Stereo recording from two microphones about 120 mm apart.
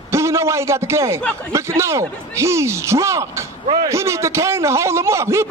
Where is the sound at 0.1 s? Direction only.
25° right (ahead or behind).